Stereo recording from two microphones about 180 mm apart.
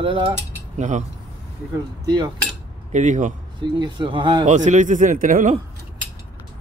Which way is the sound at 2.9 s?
45° right (ahead or behind).